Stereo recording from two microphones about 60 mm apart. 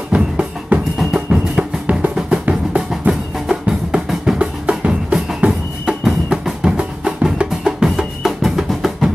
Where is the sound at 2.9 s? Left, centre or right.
Centre.